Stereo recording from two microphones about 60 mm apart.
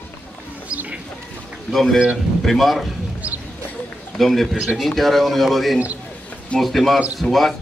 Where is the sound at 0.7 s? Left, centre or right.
Right.